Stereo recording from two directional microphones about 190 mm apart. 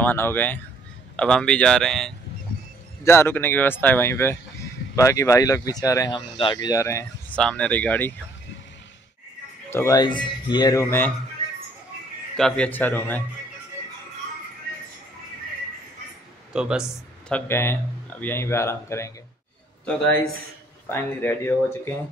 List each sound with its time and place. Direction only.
0.0 s speech: 10° left (ahead or behind)
3.0 s speech: 15° left (ahead or behind)
9.7 s speech: 15° left (ahead or behind)
12.4 s speech: 5° left (ahead or behind)
16.5 s speech: 5° right (ahead or behind)
16.8 s speech: 10° left (ahead or behind)
20.9 s speech: 10° left (ahead or behind)